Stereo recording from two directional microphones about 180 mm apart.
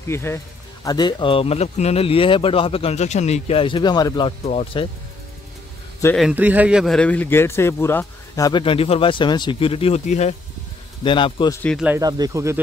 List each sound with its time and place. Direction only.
0.1 s speech: 15° left (ahead or behind)
4.5 s speech: 35° left (ahead or behind)
6.1 s speech: 5° right (ahead or behind); by 10.3 s 40° left (ahead or behind)
11.1 s speech: 25° left (ahead or behind)
12.0 s speech: 20° right (ahead or behind)